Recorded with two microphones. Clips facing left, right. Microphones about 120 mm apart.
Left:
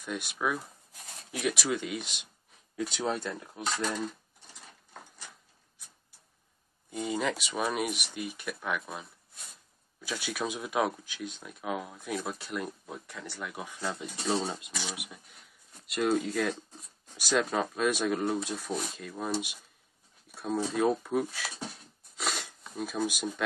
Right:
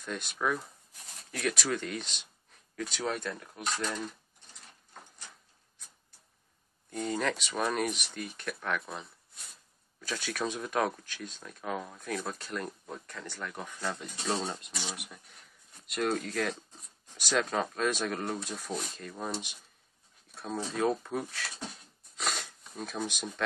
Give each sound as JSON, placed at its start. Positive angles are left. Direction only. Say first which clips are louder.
{"t": 0.0, "sound": "speech", "louder": "left 1 dB", "side_deg": 10}
{"t": 3.0, "sound": "speech", "louder": "left 1 dB", "side_deg": 25}
{"t": 6.9, "sound": "speech", "louder": "left 1 dB", "side_deg": 5}
{"t": 22.1, "sound": "a sound", "louder": "left 1 dB", "side_deg": 0}
{"t": 22.8, "sound": "speech", "louder": "left 4 dB", "side_deg": 5}